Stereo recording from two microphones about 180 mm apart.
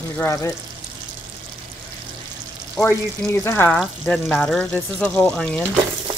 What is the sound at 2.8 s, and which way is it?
Speech, 15° left (ahead or behind).